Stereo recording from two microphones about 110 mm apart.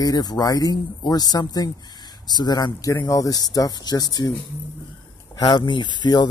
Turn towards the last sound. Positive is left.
turn(degrees=40)  # may be behind; listen again after turning